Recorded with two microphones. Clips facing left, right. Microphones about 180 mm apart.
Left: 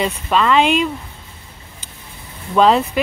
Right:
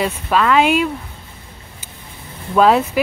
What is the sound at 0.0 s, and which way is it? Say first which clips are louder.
Speech: even; 5° right (ahead or behind).